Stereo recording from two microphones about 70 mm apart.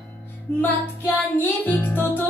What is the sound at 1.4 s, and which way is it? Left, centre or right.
Music, left.